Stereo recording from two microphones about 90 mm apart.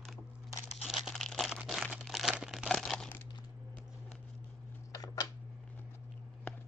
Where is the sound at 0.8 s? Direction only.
5° right (ahead or behind).